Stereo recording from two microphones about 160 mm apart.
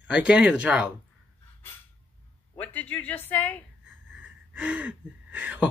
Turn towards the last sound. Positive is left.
turn(degrees=-10)  # may be behind; listen again after turning